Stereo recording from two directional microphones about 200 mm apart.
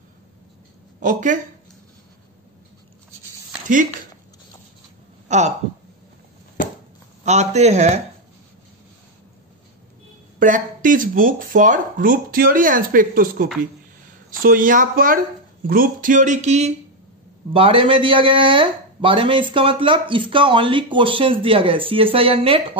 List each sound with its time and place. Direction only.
1.0 s speech: 40° right (ahead or behind)
5.3 s speech: 35° right (ahead or behind)
7.2 s speech: 35° right (ahead or behind)
10.4 s speech: 40° right (ahead or behind)